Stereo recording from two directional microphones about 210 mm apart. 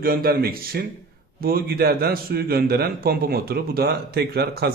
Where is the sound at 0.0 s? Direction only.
45° right (ahead or behind).